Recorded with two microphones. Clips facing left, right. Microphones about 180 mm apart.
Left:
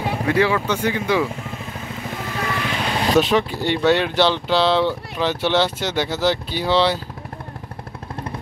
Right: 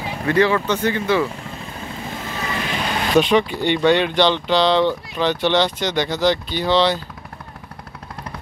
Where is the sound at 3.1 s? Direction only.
5° left (ahead or behind).